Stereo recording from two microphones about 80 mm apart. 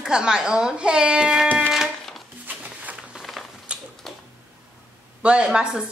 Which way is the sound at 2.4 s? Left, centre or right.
Centre.